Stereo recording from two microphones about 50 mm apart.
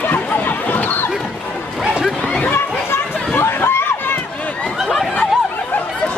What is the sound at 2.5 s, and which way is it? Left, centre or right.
Chatter, left.